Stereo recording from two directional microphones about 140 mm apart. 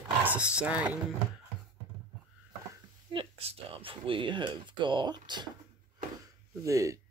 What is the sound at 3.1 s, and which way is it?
Speech, 40° right (ahead or behind).